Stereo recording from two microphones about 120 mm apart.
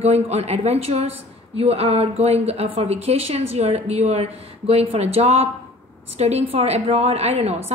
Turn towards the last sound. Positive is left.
turn(degrees=-60)  # may be behind; listen again after turning